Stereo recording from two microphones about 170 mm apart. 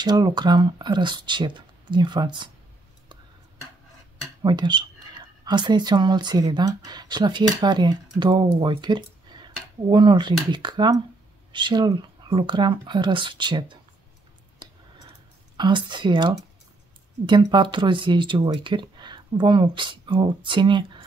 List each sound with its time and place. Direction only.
0.0 s speech: 25° right (ahead or behind)
4.4 s speech: 25° right (ahead or behind)
15.5 s speech: 25° right (ahead or behind)